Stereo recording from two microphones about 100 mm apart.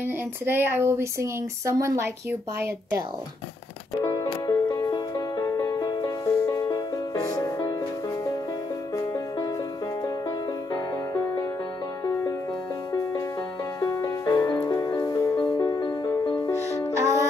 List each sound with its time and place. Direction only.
0.0 s speech: 20° right (ahead or behind)
4.0 s music: 40° left (ahead or behind)
8.9 s music: 40° left (ahead or behind)
13.7 s music: 35° left (ahead or behind); by 16.4 s 50° left (ahead or behind)
16.9 s music: 30° right (ahead or behind)